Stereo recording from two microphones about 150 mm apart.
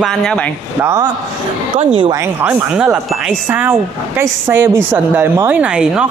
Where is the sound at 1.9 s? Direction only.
35° right (ahead or behind).